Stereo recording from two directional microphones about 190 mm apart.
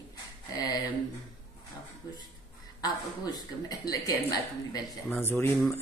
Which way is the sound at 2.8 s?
20° left (ahead or behind).